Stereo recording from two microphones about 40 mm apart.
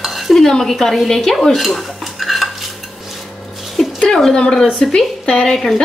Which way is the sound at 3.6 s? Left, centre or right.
Centre.